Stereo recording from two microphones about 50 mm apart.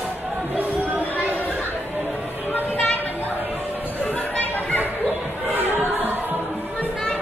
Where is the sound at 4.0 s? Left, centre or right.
Left.